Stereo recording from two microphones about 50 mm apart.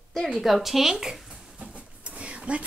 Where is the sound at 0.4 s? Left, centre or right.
Centre.